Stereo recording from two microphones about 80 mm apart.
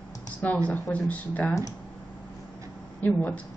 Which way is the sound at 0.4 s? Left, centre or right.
Centre.